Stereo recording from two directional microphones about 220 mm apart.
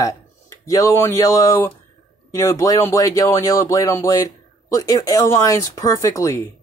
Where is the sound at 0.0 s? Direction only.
15° left (ahead or behind).